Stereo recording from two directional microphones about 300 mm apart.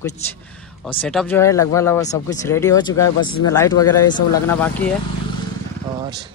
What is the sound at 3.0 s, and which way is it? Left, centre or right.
Speech, left.